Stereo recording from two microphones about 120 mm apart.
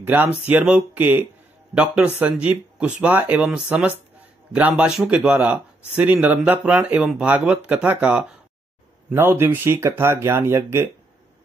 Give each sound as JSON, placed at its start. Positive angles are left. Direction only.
{"t": 0.0, "sound": "speech", "side_deg": -15}